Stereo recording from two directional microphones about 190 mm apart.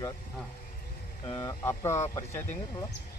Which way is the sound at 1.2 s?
25° left (ahead or behind).